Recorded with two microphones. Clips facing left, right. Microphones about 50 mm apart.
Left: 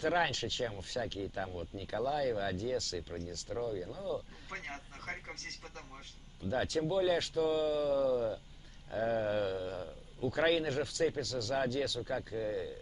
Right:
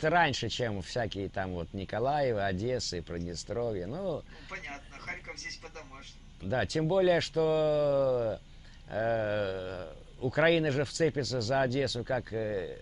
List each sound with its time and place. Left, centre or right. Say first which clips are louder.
0.0 s speech: right 5 dB; right
3.0 s a man's voice: right 4 dB; right
6.5 s speech: right 3 dB; right
6.8 s a man's voice: right 6 dB; right
12.0 s speech: right 4 dB; right